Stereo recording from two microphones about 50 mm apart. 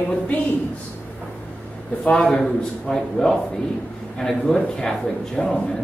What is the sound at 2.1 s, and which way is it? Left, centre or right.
A man's voice, centre.